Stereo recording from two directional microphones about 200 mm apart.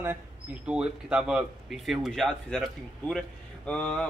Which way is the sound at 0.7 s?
5° right (ahead or behind).